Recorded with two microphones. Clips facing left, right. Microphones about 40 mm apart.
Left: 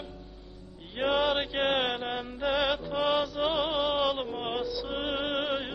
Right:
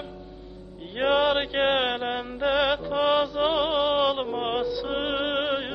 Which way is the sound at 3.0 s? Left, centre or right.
Centre.